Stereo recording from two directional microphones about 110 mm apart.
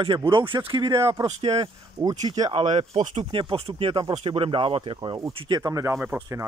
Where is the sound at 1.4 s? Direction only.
60° right (ahead or behind).